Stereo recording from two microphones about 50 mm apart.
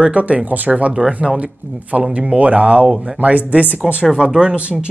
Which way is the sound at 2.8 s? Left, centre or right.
Centre.